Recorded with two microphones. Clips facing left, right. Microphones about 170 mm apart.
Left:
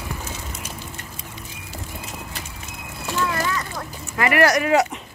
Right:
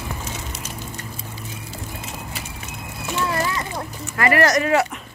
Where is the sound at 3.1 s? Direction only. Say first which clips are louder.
Even; 25° right (ahead or behind).